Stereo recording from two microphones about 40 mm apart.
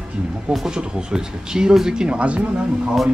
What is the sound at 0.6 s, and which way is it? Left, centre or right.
Speech, centre.